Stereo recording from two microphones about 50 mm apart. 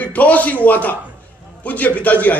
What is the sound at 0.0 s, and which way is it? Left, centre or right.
A man's voice, left.